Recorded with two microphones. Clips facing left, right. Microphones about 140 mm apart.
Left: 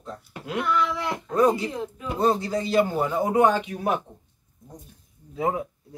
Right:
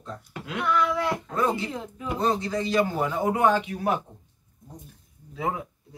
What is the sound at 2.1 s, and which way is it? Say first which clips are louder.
Speech: left 3 dB; 20° left (ahead or behind).